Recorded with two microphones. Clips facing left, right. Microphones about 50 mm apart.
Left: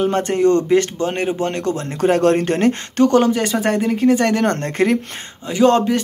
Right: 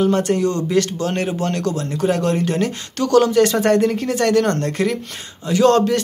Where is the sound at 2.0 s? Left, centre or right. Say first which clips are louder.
Left 5 dB; left.